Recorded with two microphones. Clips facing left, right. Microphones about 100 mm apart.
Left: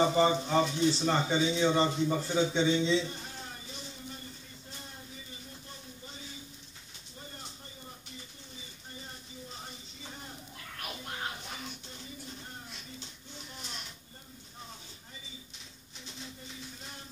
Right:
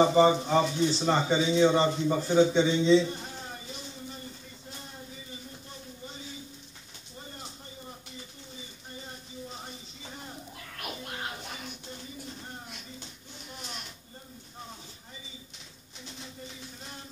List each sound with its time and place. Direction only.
0.0 s speech: 25° right (ahead or behind)